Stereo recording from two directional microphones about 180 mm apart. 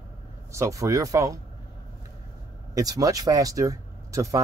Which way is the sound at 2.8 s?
20° right (ahead or behind).